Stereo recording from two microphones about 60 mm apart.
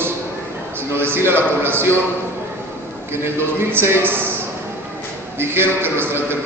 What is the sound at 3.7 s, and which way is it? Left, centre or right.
Speech, right.